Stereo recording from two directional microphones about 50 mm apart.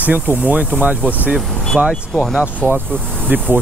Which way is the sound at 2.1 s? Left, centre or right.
Centre.